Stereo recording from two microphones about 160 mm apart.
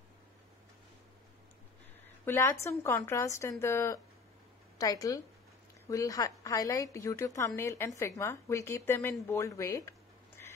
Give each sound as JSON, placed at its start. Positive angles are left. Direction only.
{"t": 2.2, "sound": "a woman's voice", "side_deg": 15}
{"t": 10.4, "sound": "duck", "side_deg": 15}